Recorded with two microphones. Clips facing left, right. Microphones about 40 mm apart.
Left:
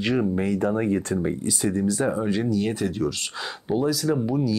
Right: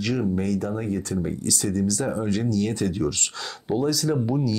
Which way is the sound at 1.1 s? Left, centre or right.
Left.